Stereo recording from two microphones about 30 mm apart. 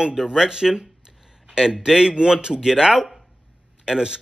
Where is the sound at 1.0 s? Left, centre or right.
Centre.